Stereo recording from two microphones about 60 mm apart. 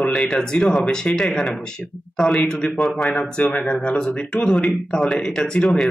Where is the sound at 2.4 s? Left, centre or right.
Centre.